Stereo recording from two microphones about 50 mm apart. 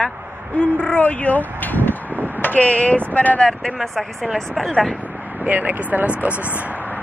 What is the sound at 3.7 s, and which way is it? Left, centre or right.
A woman's voice, centre.